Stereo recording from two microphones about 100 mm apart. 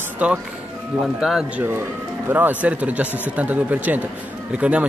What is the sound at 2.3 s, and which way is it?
Speech, 15° right (ahead or behind).